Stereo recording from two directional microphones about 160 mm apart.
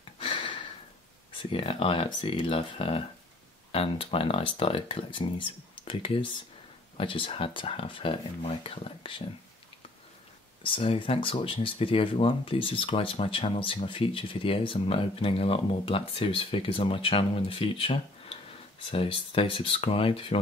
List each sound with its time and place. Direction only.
0.2 s a sound: 30° left (ahead or behind)
1.5 s speech: 35° left (ahead or behind)
10.6 s speech: 35° left (ahead or behind)